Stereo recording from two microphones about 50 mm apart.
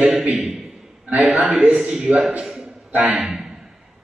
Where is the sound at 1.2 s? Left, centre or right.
Right.